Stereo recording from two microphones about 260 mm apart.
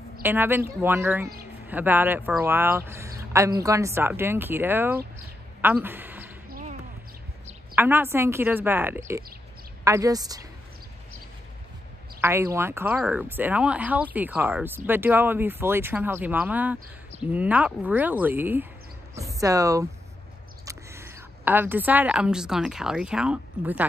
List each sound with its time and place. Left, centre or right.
0.2 s speech: centre
5.6 s a sound: centre
6.5 s basketball bounce: right
7.7 s speech: centre
12.2 s a woman's voice: centre